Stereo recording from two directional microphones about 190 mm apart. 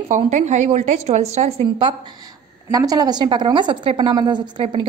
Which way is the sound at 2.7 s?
20° right (ahead or behind).